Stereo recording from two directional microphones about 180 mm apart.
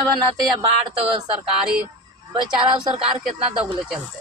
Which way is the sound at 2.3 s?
30° right (ahead or behind).